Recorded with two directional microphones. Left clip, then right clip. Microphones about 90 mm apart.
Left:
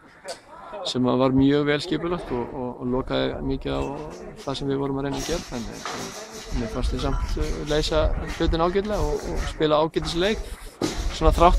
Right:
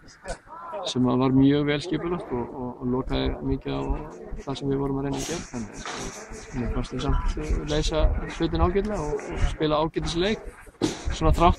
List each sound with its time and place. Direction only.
0.8 s a man's voice: 30° left (ahead or behind)
6.7 s speech: 40° left (ahead or behind)